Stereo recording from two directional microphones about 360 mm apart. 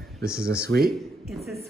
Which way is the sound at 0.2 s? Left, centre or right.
Centre.